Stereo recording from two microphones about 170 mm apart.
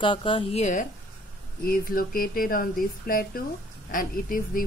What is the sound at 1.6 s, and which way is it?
A woman's voice, 60° left (ahead or behind).